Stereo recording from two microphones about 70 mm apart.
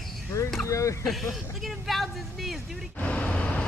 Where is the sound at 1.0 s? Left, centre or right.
Centre.